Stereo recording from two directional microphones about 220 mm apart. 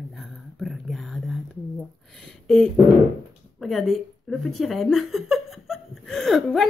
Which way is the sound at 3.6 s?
Centre (ahead or behind).